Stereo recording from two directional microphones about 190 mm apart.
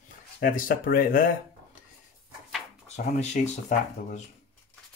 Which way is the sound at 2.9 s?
35° left (ahead or behind).